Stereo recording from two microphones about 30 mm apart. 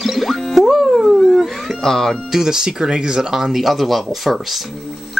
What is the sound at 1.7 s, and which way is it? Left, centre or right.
Music, centre.